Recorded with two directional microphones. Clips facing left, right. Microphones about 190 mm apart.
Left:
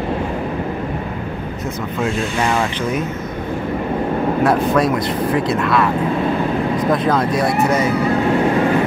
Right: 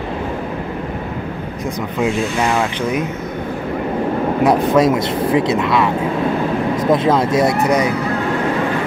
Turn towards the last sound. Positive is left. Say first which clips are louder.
# right 1 dB
turn(degrees=-15)  # may be behind; listen again after turning